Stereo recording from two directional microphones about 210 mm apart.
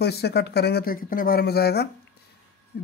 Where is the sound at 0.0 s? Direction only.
50° left (ahead or behind).